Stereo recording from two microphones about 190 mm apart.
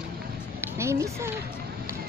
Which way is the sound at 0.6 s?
15° right (ahead or behind).